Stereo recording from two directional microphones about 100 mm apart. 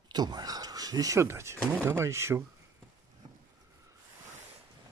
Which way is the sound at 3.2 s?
55° right (ahead or behind).